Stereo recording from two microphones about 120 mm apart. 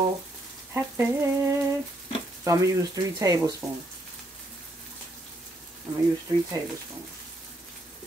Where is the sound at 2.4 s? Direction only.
30° right (ahead or behind).